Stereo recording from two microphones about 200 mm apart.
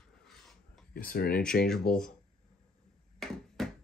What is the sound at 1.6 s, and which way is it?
Speech, 5° left (ahead or behind).